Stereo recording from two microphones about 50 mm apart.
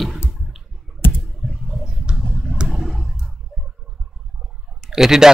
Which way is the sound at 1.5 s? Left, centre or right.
Centre.